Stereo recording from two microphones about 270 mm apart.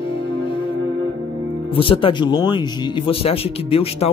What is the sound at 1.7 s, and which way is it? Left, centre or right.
Speech, centre.